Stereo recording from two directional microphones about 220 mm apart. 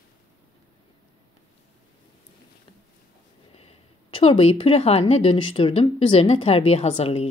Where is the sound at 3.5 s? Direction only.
25° left (ahead or behind).